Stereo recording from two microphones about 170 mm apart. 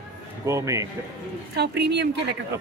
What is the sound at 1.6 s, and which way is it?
Speech, 75° right (ahead or behind).